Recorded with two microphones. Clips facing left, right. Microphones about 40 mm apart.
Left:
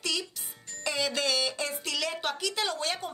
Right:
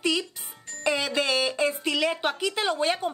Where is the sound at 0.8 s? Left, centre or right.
Right.